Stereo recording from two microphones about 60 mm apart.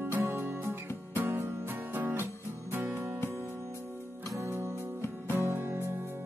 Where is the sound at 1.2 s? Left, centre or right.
Right.